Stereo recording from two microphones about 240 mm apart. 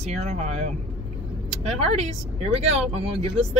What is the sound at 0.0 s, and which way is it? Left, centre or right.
Speech, right.